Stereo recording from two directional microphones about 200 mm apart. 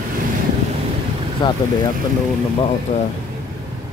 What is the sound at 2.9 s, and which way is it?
Speech, 40° left (ahead or behind).